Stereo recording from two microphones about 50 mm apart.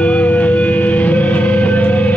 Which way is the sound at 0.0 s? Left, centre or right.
Left.